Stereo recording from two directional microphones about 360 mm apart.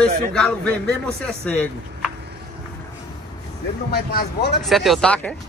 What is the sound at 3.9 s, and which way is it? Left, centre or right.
Speech, left.